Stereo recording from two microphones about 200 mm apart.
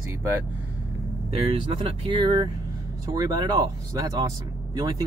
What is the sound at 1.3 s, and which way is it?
Speech, 25° right (ahead or behind).